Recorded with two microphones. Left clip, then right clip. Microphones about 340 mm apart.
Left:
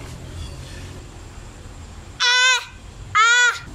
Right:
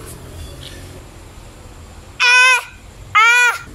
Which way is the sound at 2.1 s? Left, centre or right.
Centre.